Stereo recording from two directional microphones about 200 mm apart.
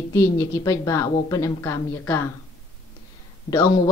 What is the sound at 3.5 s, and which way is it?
Speech, 15° left (ahead or behind).